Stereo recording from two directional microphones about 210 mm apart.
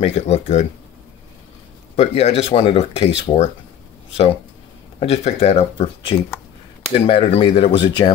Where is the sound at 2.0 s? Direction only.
30° left (ahead or behind).